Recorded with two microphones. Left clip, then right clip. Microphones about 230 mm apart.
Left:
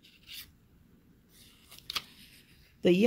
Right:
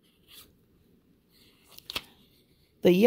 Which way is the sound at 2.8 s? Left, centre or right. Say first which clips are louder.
Right 4 dB; right.